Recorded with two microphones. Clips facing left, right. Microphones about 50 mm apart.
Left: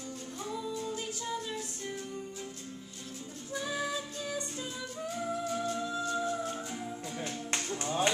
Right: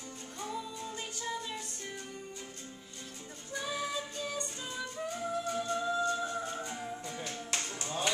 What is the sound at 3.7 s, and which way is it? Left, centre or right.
Music, centre.